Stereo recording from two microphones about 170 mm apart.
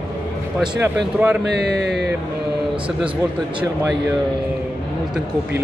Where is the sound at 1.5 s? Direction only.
80° right.